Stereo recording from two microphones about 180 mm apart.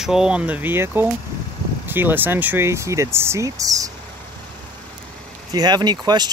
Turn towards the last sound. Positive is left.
turn(degrees=-25)  # may be behind; listen again after turning